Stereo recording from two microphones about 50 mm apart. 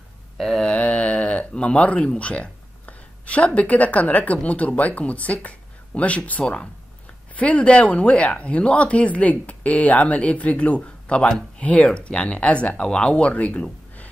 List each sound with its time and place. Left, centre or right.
0.4 s a sound: centre
0.7 s speech: left
6.4 s speech: centre
11.2 s speech: centre
11.6 s speech: left